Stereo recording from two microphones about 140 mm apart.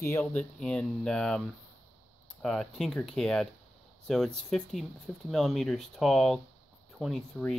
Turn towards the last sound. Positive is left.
turn(degrees=0)  # may be behind; listen again after turning